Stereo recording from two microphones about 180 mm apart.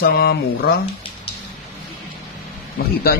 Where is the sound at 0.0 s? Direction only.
60° left (ahead or behind).